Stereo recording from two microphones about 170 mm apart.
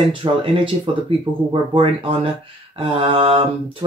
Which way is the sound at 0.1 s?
30° right (ahead or behind).